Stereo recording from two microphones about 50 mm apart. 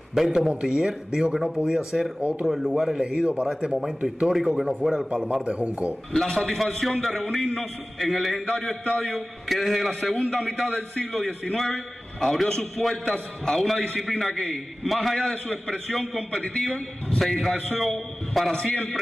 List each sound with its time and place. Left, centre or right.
0.1 s speech: centre
2.1 s a man's voice: right
2.7 s speech: centre
5.4 s a man's voice: right
6.1 s a man's voice: centre